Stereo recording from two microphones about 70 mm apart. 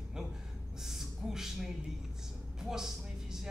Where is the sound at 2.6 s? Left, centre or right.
Centre.